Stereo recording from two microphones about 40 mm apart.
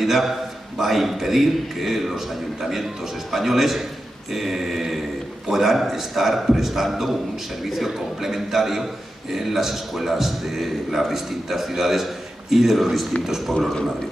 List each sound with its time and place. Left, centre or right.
0.0 s a man's voice: centre
3.3 s a man's voice: centre